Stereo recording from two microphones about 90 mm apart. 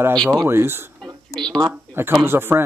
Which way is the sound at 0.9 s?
5° left (ahead or behind).